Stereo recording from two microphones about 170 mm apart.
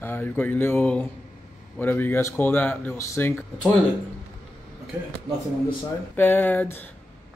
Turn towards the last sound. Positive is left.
turn(degrees=10)  # may be behind; listen again after turning